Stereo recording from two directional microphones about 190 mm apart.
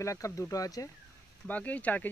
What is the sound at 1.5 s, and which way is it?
Speech, 10° left (ahead or behind).